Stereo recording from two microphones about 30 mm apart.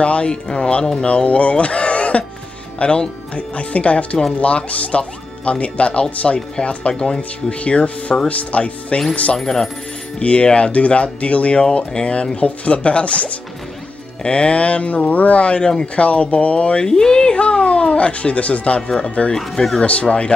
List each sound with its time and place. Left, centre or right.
0.0 s speech: left
0.3 s speech: left
1.0 s speech: left
6.9 s speech: left
9.4 s speech: centre
10.2 s speech: left
11.9 s speech: left
15.4 s speech: left
16.8 s speech: left
17.4 s speech: left
18.9 s speech: left
19.3 s speech: centre
19.8 s speech: left